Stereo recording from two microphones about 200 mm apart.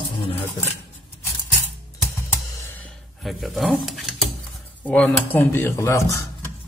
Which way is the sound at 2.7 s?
5° left (ahead or behind).